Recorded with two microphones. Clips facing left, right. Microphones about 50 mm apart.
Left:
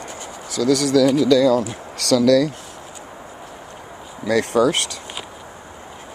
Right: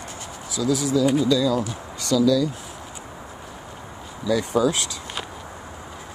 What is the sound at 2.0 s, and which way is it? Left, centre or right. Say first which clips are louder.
Speech: left 4 dB; left.